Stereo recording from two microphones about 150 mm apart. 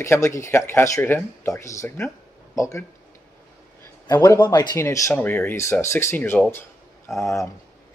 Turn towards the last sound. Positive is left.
turn(degrees=20)  # may be behind; listen again after turning